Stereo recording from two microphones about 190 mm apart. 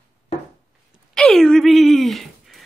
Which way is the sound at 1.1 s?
5° left (ahead or behind).